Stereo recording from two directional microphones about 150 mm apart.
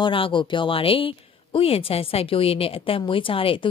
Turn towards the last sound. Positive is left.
turn(degrees=35)  # may be behind; listen again after turning